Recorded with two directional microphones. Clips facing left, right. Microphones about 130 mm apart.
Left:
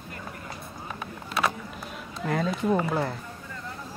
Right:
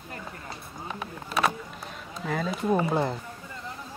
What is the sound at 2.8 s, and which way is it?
Speech, 20° right (ahead or behind).